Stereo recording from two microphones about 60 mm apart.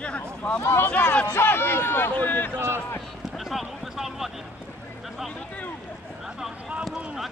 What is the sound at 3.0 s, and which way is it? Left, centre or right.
Run, centre.